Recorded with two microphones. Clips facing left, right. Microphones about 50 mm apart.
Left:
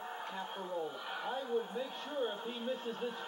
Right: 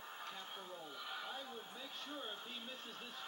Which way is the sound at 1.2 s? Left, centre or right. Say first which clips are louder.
Left 12 dB; left.